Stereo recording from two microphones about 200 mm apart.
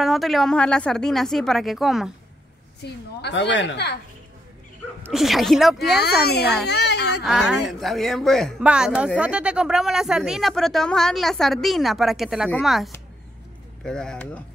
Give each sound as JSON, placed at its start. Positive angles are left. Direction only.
{"t": 0.0, "sound": "speech", "side_deg": 0}
{"t": 2.8, "sound": "a woman's voice", "side_deg": 60}
{"t": 5.0, "sound": "speech", "side_deg": 0}
{"t": 5.9, "sound": "a woman's voice", "side_deg": 55}
{"t": 7.2, "sound": "speech", "side_deg": 0}